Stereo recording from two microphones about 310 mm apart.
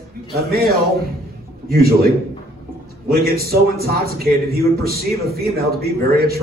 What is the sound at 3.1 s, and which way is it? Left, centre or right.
A man's voice, right.